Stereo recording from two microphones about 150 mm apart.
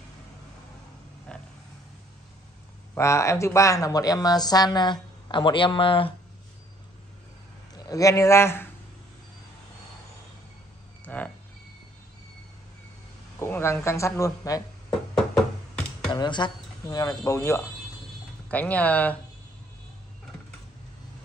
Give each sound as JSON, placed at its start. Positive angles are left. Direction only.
{"t": 1.3, "sound": "a sound", "side_deg": 5}
{"t": 2.9, "sound": "speech", "side_deg": 20}
{"t": 7.7, "sound": "a man's voice", "side_deg": 25}
{"t": 11.1, "sound": "a sound", "side_deg": 10}
{"t": 13.4, "sound": "speech", "side_deg": 15}
{"t": 16.1, "sound": "speech", "side_deg": 30}